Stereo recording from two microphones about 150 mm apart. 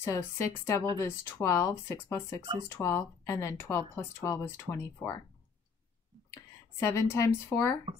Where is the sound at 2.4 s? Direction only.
30° right (ahead or behind).